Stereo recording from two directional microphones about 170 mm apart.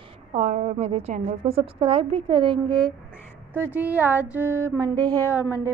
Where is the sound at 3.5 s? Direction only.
10° right (ahead or behind).